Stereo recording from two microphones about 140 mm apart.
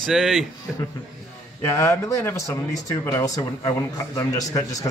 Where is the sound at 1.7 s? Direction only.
20° left (ahead or behind).